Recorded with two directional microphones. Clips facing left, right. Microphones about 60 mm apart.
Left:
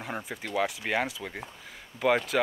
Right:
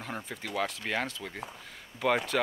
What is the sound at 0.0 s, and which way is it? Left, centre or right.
Speech, centre.